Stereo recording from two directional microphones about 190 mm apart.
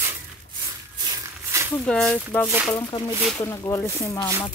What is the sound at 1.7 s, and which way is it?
Speech, 5° left (ahead or behind).